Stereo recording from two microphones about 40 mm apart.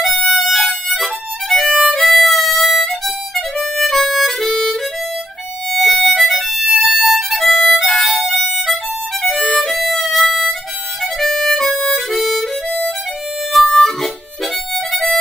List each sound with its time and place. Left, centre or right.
0.0 s music: centre
3.7 s harmonica: centre
5.7 s music: centre
9.2 s harmonica: centre
13.5 s harmonica: centre